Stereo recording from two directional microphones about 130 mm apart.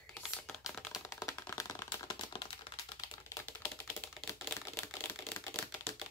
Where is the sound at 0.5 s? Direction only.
Centre (ahead or behind).